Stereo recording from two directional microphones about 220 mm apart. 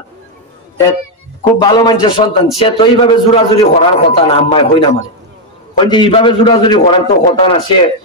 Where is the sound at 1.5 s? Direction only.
20° left (ahead or behind).